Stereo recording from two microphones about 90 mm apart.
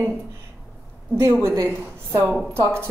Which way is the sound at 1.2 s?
30° right (ahead or behind).